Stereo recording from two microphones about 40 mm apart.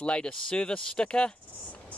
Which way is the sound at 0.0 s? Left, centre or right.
Left.